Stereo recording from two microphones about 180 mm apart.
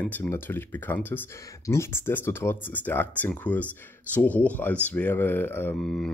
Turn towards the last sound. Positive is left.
turn(degrees=5)  # may be behind; listen again after turning